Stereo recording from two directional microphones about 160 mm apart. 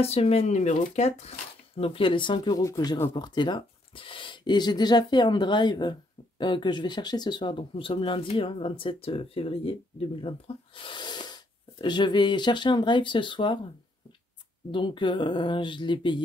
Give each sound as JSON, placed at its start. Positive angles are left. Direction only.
{"t": 0.0, "sound": "speech", "side_deg": 40}
{"t": 14.7, "sound": "speech", "side_deg": 30}